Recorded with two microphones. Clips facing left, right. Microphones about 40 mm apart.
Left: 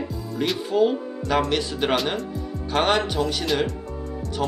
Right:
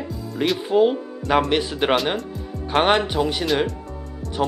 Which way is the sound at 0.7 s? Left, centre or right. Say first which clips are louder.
Right 3 dB; centre.